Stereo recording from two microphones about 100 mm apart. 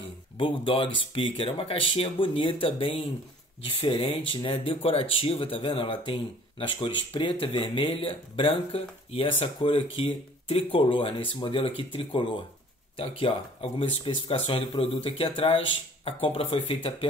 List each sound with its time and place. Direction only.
0.4 s speech: 60° left (ahead or behind)